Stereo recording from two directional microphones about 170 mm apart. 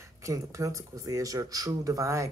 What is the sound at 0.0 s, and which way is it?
Speech, 15° right (ahead or behind).